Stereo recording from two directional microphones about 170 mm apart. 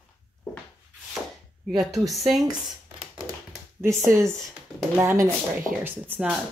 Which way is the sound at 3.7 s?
15° right (ahead or behind).